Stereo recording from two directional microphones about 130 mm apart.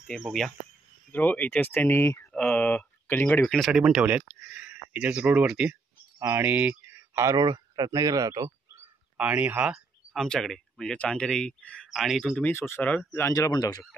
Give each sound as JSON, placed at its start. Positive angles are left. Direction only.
{"t": 0.0, "sound": "speech", "side_deg": 0}
{"t": 1.1, "sound": "speech", "side_deg": 15}
{"t": 2.3, "sound": "speech", "side_deg": 5}
{"t": 3.4, "sound": "speech", "side_deg": 5}
{"t": 4.3, "sound": "a sound", "side_deg": -10}
{"t": 6.1, "sound": "speech", "side_deg": -20}
{"t": 9.1, "sound": "speech", "side_deg": -10}
{"t": 10.1, "sound": "speech", "side_deg": 5}
{"t": 12.4, "sound": "speech", "side_deg": 20}
{"t": 13.3, "sound": "speech", "side_deg": 30}